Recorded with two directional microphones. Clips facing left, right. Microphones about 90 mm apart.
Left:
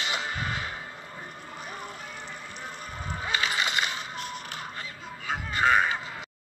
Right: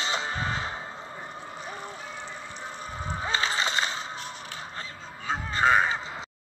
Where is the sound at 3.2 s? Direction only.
25° right (ahead or behind).